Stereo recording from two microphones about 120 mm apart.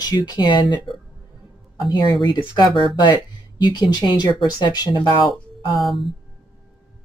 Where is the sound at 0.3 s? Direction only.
40° left (ahead or behind).